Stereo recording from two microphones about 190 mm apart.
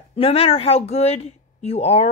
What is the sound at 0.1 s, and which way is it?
Speech, 30° left (ahead or behind).